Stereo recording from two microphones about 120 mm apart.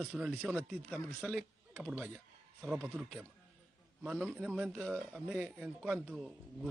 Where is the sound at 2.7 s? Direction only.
15° right (ahead or behind).